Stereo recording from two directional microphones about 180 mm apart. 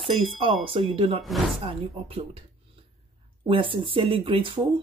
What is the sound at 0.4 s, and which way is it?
Speech, 30° right (ahead or behind).